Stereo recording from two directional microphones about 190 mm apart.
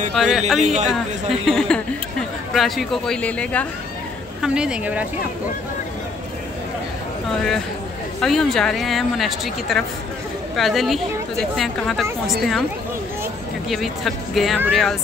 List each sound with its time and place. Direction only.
0.1 s speech: centre (ahead or behind)
0.6 s a man's voice: 35° right (ahead or behind)
1.4 s speech: centre (ahead or behind)
4.4 s speech: 5° right (ahead or behind)
8.2 s speech: centre (ahead or behind)
13.7 s speech: centre (ahead or behind)